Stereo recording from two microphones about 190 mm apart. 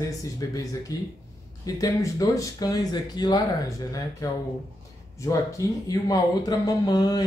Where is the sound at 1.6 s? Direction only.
20° left (ahead or behind).